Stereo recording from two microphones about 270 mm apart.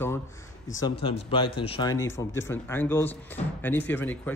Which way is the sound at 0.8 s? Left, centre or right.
Left.